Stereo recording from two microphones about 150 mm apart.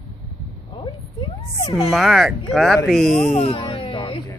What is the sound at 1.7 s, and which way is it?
Speech, centre (ahead or behind).